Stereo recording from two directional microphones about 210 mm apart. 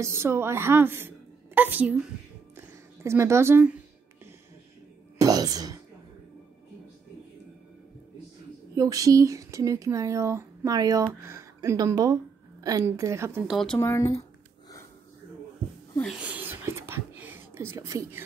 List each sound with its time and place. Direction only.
0.0 s a woman's voice: 10° right (ahead or behind)
2.5 s music: 10° right (ahead or behind)
5.2 s speech: 15° right (ahead or behind)
8.7 s speech: 15° right (ahead or behind)
13.7 s speech: 15° left (ahead or behind)
16.0 s a sound: 5° right (ahead or behind)